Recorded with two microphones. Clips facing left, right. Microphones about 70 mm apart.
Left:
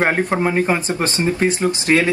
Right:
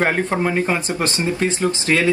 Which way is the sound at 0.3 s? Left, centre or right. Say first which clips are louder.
Left 2 dB; centre.